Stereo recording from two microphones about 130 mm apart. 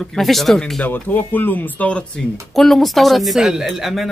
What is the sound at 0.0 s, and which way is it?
A woman's voice, centre (ahead or behind).